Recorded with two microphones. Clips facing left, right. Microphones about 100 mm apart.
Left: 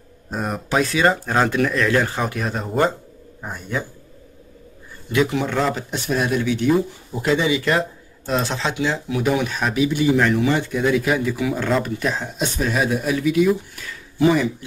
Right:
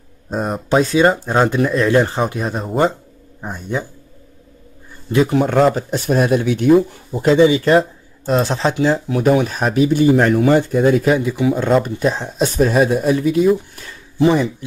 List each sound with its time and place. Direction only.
0.3 s a man's voice: 30° right (ahead or behind)
5.1 s speech: 40° right (ahead or behind)
7.1 s speech: 35° right (ahead or behind)
11.1 s speech: 25° right (ahead or behind)
12.4 s speech: 40° right (ahead or behind)
13.7 s a sound: 35° right (ahead or behind)